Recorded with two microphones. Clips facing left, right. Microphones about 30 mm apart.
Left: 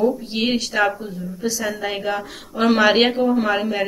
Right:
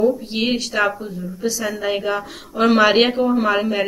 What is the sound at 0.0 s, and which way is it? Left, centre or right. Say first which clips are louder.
A woman's voice: right 1 dB; centre.